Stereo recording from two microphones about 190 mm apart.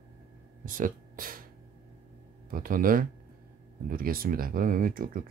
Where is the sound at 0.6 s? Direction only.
45° right (ahead or behind).